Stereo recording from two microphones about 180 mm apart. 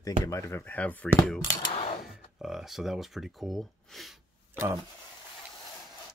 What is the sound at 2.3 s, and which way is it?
Speech, centre (ahead or behind).